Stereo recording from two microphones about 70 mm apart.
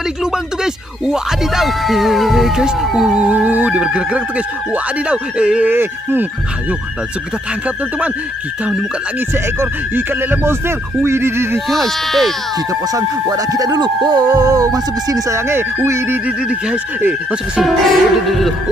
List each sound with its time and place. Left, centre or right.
1.0 s speech: centre
3.3 s speech: right
5.7 s speech: right
9.6 s speech: right
11.7 s speech: centre
12.9 s music: right
15.3 s speech: right
17.6 s speech: centre